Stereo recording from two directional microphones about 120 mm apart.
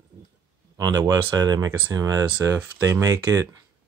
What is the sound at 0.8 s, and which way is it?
Speech, 30° right (ahead or behind).